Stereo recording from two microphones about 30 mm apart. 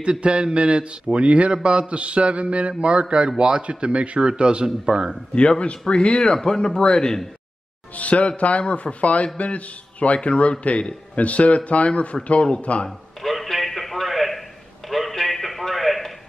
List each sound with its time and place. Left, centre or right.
0.0 s a man's voice: right
3.6 s a man's voice: right
5.6 s speech: left
7.9 s a man's voice: left
13.2 s a sound: centre